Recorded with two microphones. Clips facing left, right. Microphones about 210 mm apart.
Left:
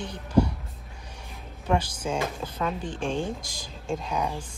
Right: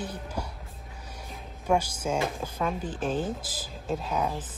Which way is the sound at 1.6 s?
10° right (ahead or behind).